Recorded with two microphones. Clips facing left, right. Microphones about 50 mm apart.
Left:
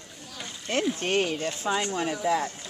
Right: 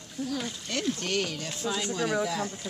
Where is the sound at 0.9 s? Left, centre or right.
Left.